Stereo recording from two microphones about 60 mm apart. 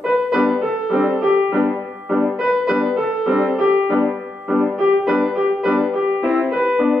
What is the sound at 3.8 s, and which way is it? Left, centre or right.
Piano, centre.